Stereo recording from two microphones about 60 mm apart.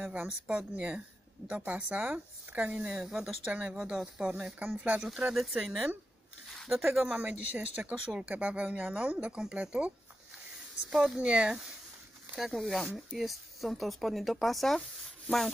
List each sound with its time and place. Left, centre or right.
0.5 s a woman's voice: centre
3.4 s a woman's voice: right
4.6 s a woman's voice: right
5.0 s speech: centre
7.1 s a woman's voice: right
10.9 s speech: centre
11.1 s speech: centre
12.4 s speech: centre